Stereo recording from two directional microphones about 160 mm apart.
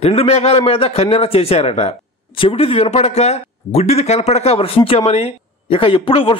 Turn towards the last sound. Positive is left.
turn(degrees=35)  # may be behind; listen again after turning